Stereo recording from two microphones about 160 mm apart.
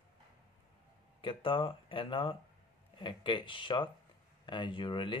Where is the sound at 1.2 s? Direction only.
30° left (ahead or behind).